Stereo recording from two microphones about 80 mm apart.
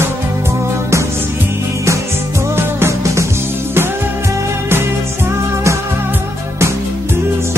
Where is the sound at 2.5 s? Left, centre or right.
Right.